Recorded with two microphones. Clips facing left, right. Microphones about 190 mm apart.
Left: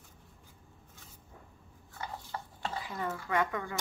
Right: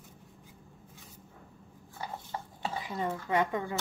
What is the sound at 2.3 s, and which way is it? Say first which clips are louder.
Chopping: right 2 dB; 20° right (ahead or behind).